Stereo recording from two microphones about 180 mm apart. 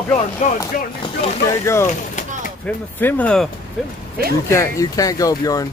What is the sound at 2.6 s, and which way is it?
Speech, 10° left (ahead or behind).